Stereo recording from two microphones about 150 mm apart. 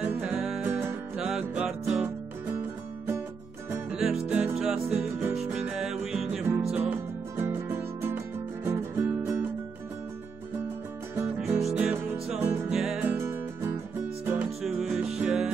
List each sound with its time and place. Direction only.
0.0 s music: 10° right (ahead or behind)
3.9 s music: 5° right (ahead or behind)
11.1 s music: 15° right (ahead or behind)